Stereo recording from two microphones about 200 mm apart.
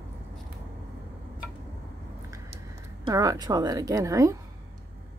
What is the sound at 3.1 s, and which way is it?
A woman's voice, 15° right (ahead or behind).